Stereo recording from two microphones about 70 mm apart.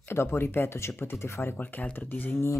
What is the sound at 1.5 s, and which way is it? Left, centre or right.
Speech, left.